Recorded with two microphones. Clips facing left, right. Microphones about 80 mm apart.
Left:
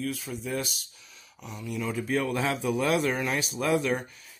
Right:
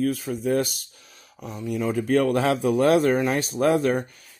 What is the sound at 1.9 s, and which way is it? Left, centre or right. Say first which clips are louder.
Speech: right 8 dB; right.